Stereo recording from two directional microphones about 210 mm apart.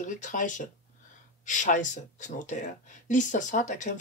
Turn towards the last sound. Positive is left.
turn(degrees=35)  # may be behind; listen again after turning